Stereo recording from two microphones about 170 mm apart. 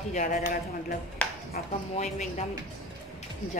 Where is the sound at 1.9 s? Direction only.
45° left (ahead or behind).